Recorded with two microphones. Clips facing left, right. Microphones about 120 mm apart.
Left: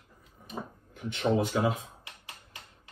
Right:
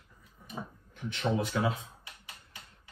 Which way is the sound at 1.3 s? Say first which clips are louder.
Left 4 dB; 15° left (ahead or behind).